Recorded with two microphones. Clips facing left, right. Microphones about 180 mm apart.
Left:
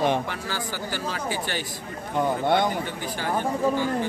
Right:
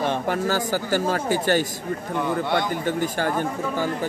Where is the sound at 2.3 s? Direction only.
50° left (ahead or behind).